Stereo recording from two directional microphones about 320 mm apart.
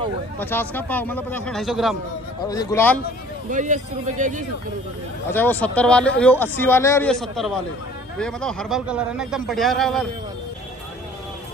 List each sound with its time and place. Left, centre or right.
0.4 s speech: centre
2.4 s a man's voice: centre
3.4 s speech: right
5.3 s speech: centre